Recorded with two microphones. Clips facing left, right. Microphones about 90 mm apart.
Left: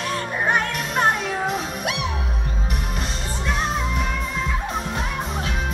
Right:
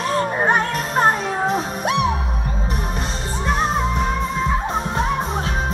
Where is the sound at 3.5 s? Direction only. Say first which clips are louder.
Right 5 dB; 30° right (ahead or behind).